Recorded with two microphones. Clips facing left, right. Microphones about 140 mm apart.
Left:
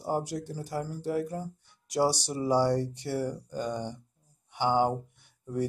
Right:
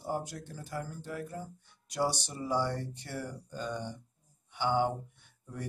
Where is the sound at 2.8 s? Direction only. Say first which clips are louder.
Left 9 dB; 10° left (ahead or behind).